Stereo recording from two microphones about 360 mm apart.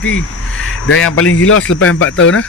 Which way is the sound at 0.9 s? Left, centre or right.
Left.